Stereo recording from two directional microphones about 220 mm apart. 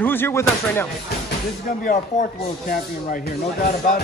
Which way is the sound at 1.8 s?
40° left (ahead or behind).